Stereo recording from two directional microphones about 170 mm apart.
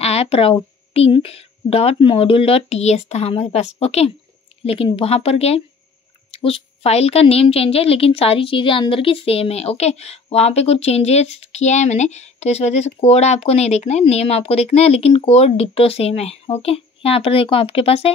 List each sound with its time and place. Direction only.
0.0 s a woman's voice: 35° left (ahead or behind)